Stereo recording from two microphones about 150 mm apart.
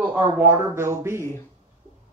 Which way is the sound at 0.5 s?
15° right (ahead or behind).